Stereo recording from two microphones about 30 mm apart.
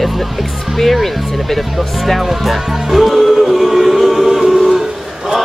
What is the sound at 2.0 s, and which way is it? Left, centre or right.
Speech, centre.